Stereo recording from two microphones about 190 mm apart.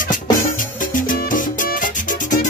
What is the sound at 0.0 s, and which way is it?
Music, 45° left (ahead or behind).